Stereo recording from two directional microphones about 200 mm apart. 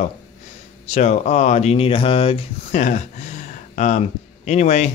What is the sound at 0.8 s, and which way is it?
A man's voice, 35° left (ahead or behind).